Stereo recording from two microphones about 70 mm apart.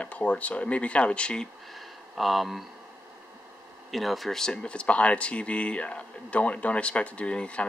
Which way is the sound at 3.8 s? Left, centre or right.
Centre.